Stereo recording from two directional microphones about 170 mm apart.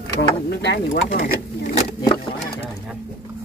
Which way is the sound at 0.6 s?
90° left.